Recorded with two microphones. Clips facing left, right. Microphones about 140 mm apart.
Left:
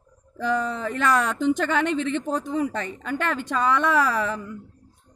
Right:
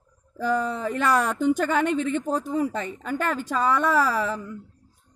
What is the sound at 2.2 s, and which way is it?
A woman's voice, 5° right (ahead or behind).